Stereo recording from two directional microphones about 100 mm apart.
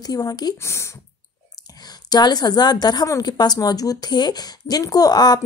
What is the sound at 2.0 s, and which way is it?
A woman's voice, 45° left (ahead or behind).